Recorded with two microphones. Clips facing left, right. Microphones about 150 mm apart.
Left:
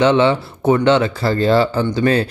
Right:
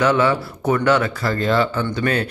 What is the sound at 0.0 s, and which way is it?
Speech, 25° left (ahead or behind).